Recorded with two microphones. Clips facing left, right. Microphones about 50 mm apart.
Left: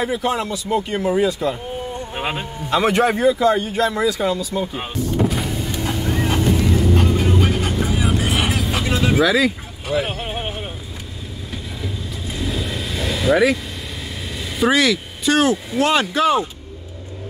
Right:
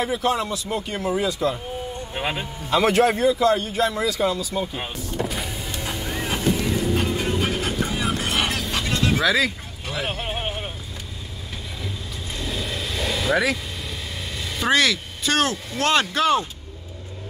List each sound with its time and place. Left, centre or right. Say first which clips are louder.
0.0 s speech: left 2 dB; centre
4.6 s speech: left 3 dB; centre
5.2 s vehicle: left 4 dB; centre
11.8 s vehicle: left 5 dB; centre
14.3 s speech: left 3 dB; centre